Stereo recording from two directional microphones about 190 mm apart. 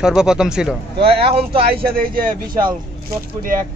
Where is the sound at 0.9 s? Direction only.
30° right (ahead or behind).